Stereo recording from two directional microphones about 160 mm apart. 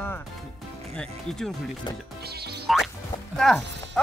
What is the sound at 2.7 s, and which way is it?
Speech, centre (ahead or behind).